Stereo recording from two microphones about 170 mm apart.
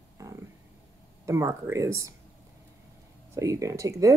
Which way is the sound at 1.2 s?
15° right (ahead or behind).